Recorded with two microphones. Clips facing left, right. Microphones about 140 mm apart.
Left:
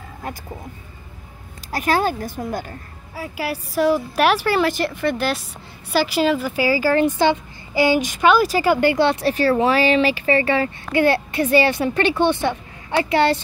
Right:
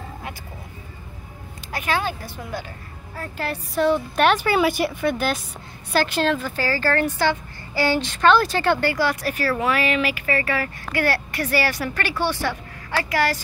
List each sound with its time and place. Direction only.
1.7 s a woman's voice: 40° left (ahead or behind)
3.2 s a woman's voice: 5° left (ahead or behind)
8.8 s speech: 25° left (ahead or behind)